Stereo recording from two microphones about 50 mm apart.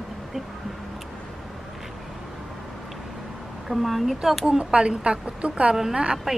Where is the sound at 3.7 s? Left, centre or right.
Centre.